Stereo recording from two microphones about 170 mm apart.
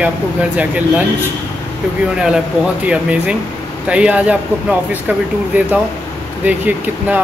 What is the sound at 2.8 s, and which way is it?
Speech, 5° right (ahead or behind).